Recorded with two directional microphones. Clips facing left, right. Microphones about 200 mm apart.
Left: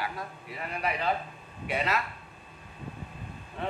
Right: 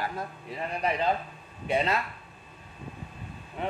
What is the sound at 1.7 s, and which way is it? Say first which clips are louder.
Speech: right 3 dB; 30° right (ahead or behind).